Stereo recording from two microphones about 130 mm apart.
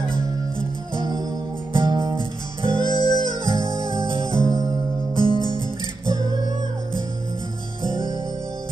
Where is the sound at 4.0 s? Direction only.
40° right (ahead or behind).